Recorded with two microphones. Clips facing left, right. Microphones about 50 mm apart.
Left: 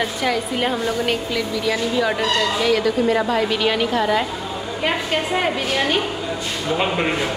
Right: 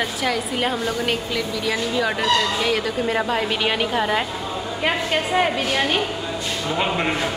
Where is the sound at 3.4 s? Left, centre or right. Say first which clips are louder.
Left 2 dB; centre.